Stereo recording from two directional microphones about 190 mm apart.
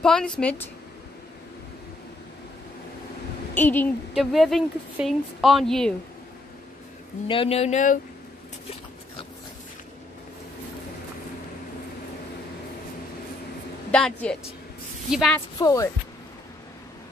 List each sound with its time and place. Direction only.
0.0 s a woman's voice: 5° left (ahead or behind)
3.5 s speech: 10° left (ahead or behind)
4.1 s a woman's voice: centre (ahead or behind)
7.2 s speech: 30° left (ahead or behind)
13.9 s a woman's voice: 5° left (ahead or behind)
15.6 s speech: 15° left (ahead or behind)